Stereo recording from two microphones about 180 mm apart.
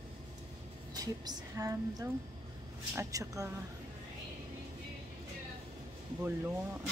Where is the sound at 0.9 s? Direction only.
20° right (ahead or behind).